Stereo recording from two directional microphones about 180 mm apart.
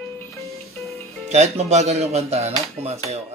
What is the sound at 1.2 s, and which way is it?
Speech, 40° right (ahead or behind).